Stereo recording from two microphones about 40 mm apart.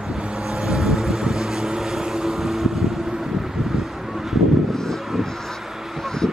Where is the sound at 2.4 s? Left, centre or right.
Centre.